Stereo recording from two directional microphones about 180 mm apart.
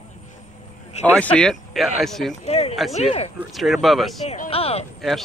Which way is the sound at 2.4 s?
35° left (ahead or behind).